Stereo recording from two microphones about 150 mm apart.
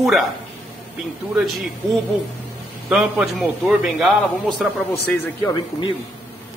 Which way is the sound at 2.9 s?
5° right (ahead or behind).